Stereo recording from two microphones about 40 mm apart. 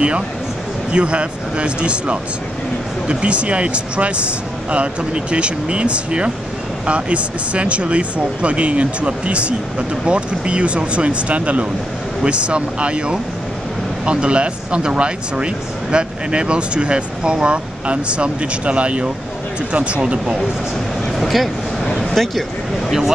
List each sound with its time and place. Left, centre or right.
0.9 s speech: right
21.2 s speech: centre
22.8 s speech: centre